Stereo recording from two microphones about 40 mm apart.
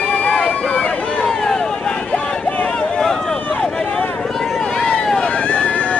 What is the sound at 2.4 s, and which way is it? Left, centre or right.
Boat, left.